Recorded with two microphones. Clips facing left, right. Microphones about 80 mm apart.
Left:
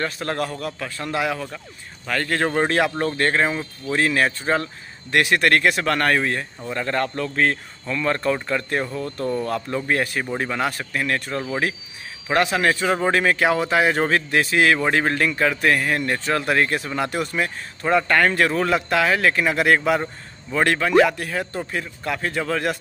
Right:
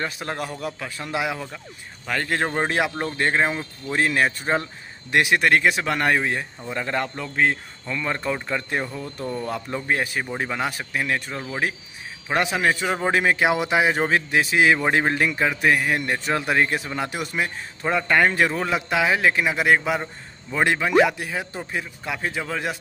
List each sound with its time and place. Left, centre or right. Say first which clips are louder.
0.0 s speech: left 3 dB; centre